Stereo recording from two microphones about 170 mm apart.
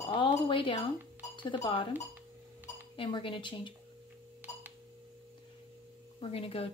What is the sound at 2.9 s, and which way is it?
Speech, 30° left (ahead or behind).